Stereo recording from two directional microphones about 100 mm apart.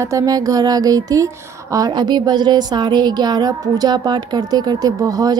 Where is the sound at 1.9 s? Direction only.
45° right (ahead or behind).